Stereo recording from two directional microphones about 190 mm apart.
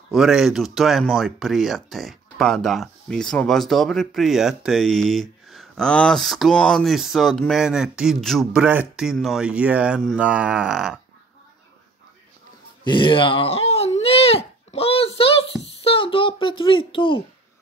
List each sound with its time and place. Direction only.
0.1 s speech: centre (ahead or behind)
12.8 s a sound: 25° left (ahead or behind)
15.8 s a child's voice: 30° left (ahead or behind)